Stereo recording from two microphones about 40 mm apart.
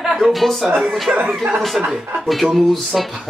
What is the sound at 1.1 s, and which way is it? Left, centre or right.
Speech, right.